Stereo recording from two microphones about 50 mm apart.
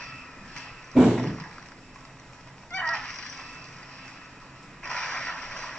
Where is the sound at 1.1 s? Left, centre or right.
Centre.